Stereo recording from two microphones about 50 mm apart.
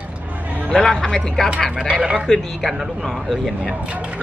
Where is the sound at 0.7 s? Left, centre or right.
Centre.